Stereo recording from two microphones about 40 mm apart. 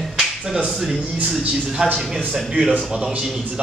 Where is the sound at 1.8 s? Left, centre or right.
Right.